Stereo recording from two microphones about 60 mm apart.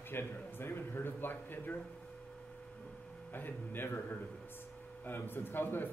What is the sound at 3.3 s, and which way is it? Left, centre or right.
Speech, left.